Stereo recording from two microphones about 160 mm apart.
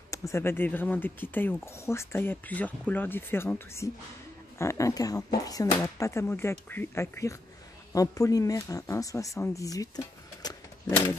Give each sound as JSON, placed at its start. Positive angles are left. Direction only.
{"t": 0.1, "sound": "speech", "side_deg": 20}